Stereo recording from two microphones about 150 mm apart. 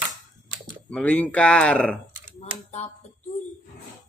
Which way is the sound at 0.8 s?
5° left (ahead or behind).